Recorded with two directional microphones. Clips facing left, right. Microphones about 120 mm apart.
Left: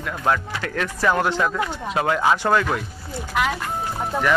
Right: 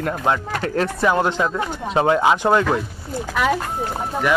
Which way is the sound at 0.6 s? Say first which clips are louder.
Right 7 dB; 35° right (ahead or behind).